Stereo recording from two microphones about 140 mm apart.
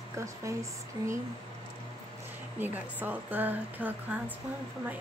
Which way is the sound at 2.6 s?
10° right (ahead or behind).